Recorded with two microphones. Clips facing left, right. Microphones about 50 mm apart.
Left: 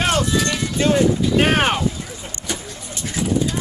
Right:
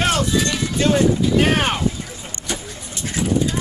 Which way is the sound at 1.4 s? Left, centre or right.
Left.